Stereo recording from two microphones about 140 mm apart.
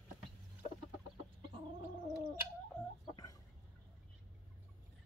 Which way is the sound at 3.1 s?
25° left (ahead or behind).